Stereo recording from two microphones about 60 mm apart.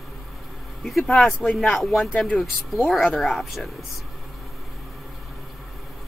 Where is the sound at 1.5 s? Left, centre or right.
Centre.